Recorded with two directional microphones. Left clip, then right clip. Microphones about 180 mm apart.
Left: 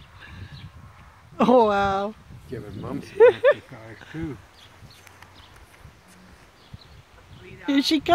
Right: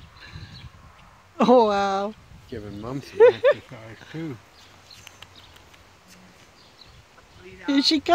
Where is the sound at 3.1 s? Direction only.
Centre (ahead or behind).